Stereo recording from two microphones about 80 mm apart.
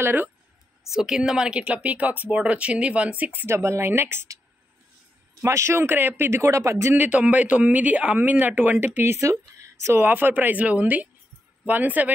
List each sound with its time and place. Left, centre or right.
0.0 s speech: right
0.8 s a woman's voice: centre
3.4 s a man's voice: right
5.4 s a man's voice: right
7.0 s speech: centre